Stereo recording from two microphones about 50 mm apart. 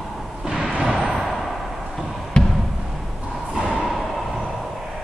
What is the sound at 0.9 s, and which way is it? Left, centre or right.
Basketball bounce, centre.